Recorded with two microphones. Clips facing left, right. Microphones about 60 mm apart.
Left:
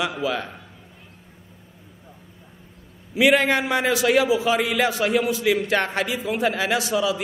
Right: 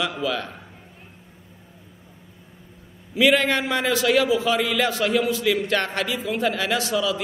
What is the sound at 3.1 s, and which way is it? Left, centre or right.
A man's voice, centre.